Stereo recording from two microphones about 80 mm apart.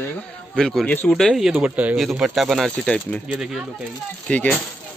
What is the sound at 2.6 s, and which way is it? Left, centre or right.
Speech, centre.